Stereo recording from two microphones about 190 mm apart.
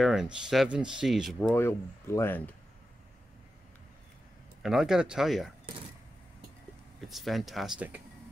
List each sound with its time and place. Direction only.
0.0 s speech: 5° right (ahead or behind)
1.5 s speech: 10° left (ahead or behind)
4.6 s speech: 5° right (ahead or behind)
7.1 s speech: centre (ahead or behind)